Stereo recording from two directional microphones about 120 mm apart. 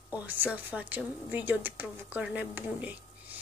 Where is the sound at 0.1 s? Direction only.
15° right (ahead or behind).